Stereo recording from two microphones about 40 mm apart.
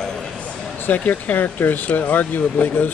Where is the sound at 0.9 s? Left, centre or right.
Left.